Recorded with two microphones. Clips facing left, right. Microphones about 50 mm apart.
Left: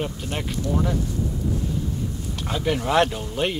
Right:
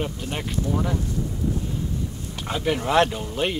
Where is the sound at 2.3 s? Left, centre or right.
Centre.